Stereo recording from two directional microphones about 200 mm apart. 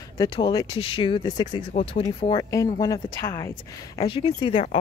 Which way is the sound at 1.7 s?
30° left (ahead or behind).